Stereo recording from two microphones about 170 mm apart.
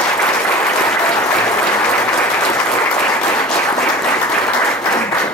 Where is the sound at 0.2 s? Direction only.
10° left (ahead or behind).